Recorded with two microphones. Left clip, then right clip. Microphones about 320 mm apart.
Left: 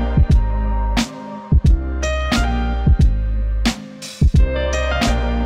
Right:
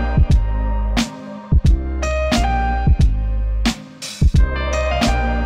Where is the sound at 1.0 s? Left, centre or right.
Centre.